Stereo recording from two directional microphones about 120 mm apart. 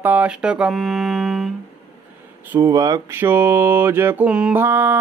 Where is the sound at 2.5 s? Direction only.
30° right (ahead or behind).